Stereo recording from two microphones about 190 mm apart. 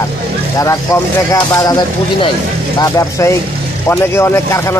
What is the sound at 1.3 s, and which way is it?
Speech, 20° left (ahead or behind).